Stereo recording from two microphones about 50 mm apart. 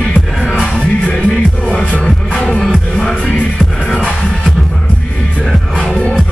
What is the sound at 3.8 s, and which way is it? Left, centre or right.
Music, centre.